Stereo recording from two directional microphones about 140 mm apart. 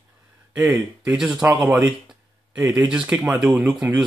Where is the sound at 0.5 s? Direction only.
10° right (ahead or behind).